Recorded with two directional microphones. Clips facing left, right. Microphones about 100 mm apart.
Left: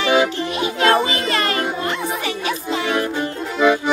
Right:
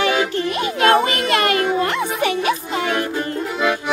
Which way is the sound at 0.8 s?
55° right (ahead or behind).